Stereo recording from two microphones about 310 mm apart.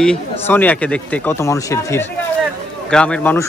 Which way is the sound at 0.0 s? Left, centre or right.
Centre.